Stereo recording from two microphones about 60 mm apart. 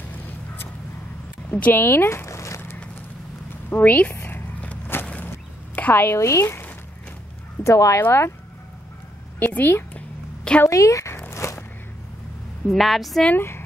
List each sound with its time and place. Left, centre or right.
1.5 s speech: left
1.8 s a sound: left
3.7 s speech: left
4.1 s zipper: left
4.9 s a sound: left
5.8 s a woman's voice: left
6.1 s speech: left
7.6 s speech: left
9.4 s a woman's voice: left
9.9 s a sound: centre
10.7 s speech: left
11.2 s a sound: left
12.6 s a woman's voice: centre